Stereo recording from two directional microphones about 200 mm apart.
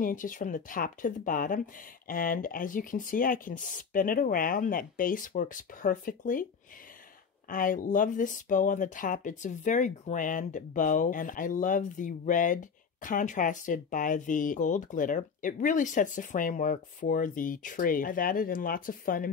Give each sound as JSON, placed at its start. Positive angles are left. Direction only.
{"t": 0.0, "sound": "speech", "side_deg": 40}
{"t": 7.4, "sound": "speech", "side_deg": 45}